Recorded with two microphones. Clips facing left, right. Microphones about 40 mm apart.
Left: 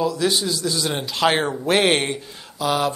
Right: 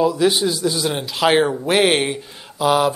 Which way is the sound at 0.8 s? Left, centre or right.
Centre.